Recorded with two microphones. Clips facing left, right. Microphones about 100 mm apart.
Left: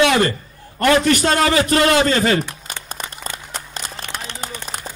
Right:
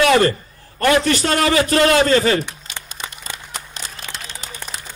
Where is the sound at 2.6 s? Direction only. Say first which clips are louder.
Left 2 dB; 45° left (ahead or behind).